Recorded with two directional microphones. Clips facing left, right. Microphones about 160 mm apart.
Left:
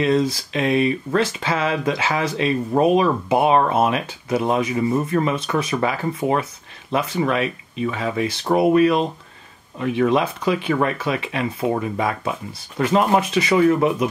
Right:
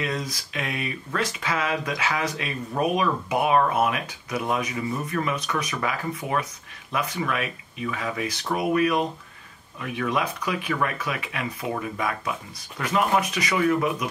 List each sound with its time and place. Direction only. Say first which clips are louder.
0.0 s speech: left 11 dB; 30° left (ahead or behind)